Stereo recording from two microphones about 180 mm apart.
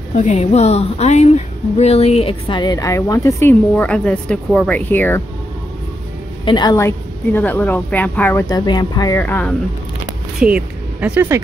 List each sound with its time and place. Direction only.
0.1 s a woman's voice: 40° left (ahead or behind); by 5.2 s 10° left (ahead or behind)
6.4 s speech: 25° left (ahead or behind)
8.5 s a woman's voice: 25° left (ahead or behind)
10.4 s speech: 5° right (ahead or behind)